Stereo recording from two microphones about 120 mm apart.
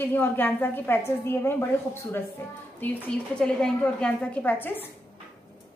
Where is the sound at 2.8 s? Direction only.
15° left (ahead or behind).